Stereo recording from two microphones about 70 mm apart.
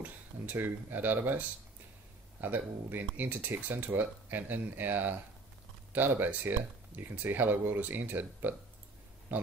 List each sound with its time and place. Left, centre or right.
0.0 s speech: right